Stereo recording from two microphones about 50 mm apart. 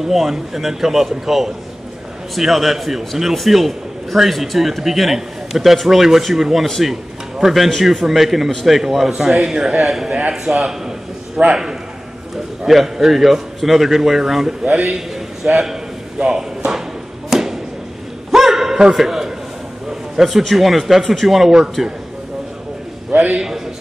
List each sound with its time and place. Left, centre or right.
0.0 s a man's voice: centre
10.5 s a man's voice: right
11.4 s a man's voice: centre
12.6 s a man's voice: centre
15.5 s speech: centre
16.2 s drawer open or close: centre
17.3 s a sound: centre
19.9 s a man's voice: centre
23.1 s a man's voice: right